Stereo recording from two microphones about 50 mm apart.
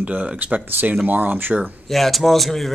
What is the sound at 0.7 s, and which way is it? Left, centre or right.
Speech, right.